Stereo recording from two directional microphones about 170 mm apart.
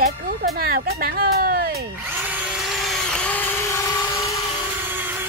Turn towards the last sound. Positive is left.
turn(degrees=15)  # may be behind; listen again after turning